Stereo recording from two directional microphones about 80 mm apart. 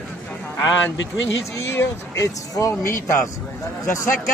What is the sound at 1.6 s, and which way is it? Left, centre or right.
Speech, left.